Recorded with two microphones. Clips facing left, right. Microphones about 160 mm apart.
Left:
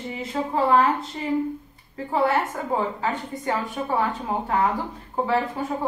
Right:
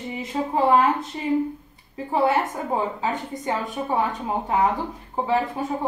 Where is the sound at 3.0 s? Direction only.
20° right (ahead or behind).